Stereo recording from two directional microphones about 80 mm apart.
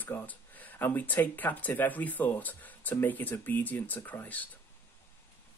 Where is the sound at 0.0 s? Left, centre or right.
Left.